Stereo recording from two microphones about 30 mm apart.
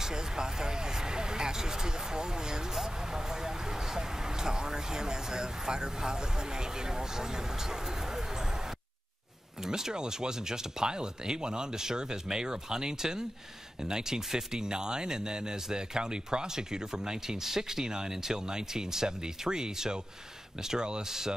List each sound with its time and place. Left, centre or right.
0.0 s speech: right
9.7 s speech: right